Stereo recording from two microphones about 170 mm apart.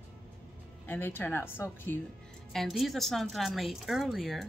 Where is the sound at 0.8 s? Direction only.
10° left (ahead or behind).